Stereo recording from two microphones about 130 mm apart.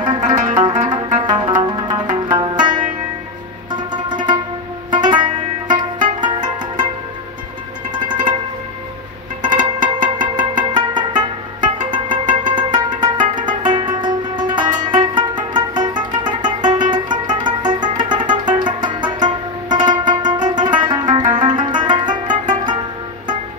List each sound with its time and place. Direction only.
0.0 s zither: 35° right (ahead or behind)
1.2 s music: 35° right (ahead or behind)
7.9 s music: 35° right (ahead or behind)
9.4 s music: 35° right (ahead or behind)